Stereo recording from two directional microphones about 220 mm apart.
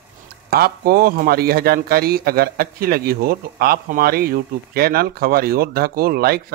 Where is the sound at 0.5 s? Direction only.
45° right (ahead or behind).